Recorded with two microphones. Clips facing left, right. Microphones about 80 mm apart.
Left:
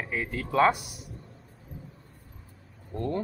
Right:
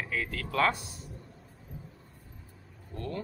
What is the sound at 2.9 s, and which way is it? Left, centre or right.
Speech, left.